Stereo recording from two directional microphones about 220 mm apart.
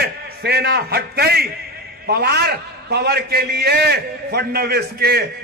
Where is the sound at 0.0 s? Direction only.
45° right (ahead or behind).